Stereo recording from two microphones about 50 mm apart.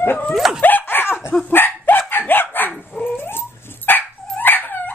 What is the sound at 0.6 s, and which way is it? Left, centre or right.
Dog, left.